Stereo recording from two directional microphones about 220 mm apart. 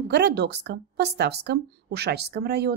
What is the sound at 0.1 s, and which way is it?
A woman's voice, 50° right (ahead or behind).